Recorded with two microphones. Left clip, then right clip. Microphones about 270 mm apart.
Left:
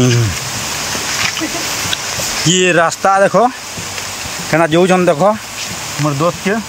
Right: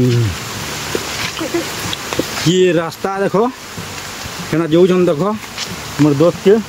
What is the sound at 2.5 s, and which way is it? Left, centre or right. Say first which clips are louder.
Speech: left 3 dB; centre.